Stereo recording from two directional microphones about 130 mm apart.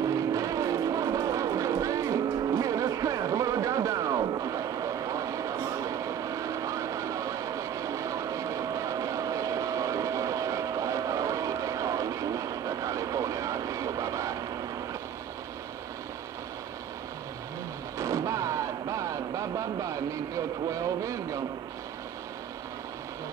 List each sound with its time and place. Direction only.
0.0 s vehicle: 25° right (ahead or behind)
17.9 s music: 25° right (ahead or behind)
21.0 s a sound: 25° right (ahead or behind)